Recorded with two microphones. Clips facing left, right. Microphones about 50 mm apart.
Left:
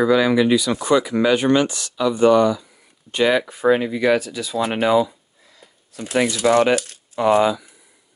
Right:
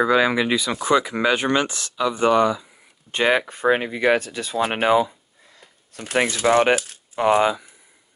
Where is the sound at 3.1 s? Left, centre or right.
Right.